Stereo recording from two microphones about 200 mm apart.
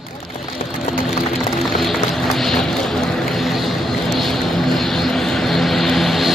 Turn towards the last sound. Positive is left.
turn(degrees=0)  # may be behind; listen again after turning